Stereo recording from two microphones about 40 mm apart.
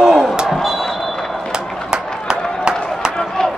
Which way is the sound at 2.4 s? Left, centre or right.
Centre.